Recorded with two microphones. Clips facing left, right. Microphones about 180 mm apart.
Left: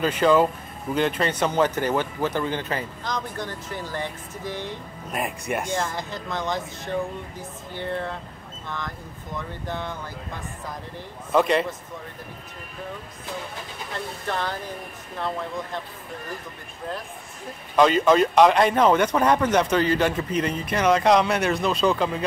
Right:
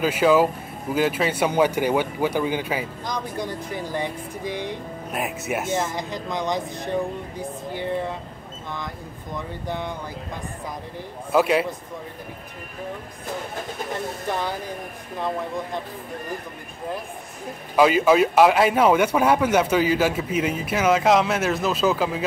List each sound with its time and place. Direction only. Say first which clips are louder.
0.0 s speech: right 1 dB; 5° right (ahead or behind)
5.1 s speech: even; 5° right (ahead or behind)
11.3 s speech: right 1 dB; 5° right (ahead or behind)
14.2 s speech: left 1 dB; 10° right (ahead or behind)
17.7 s speech: right 1 dB; 5° right (ahead or behind)